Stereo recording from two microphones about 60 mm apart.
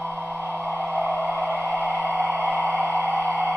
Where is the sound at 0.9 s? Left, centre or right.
Right.